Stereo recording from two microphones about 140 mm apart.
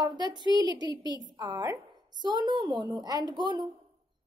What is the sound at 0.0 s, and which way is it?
A woman's voice, 30° right (ahead or behind).